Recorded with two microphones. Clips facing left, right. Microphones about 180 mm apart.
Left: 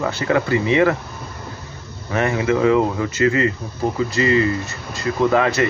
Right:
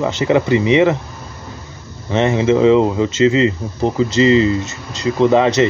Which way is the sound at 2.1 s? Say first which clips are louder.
Right 5 dB; 25° right (ahead or behind).